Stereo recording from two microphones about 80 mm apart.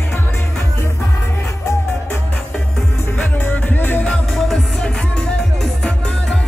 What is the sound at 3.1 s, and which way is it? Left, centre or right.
Music, left.